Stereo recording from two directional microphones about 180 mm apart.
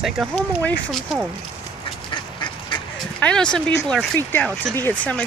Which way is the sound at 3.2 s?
5° left (ahead or behind).